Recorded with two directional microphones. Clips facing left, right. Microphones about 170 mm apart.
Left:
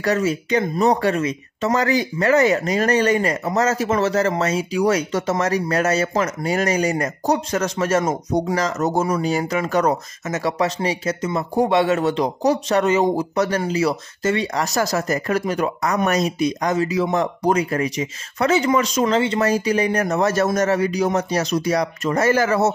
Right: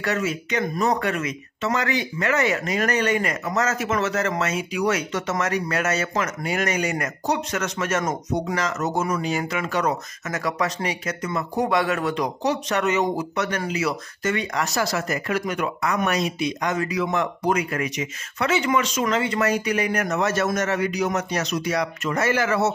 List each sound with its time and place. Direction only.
0.0 s speech: 35° left (ahead or behind)
10.2 s speech: 25° left (ahead or behind)
16.7 s speech: 30° left (ahead or behind)